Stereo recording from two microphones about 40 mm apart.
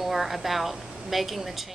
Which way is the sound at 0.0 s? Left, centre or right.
Centre.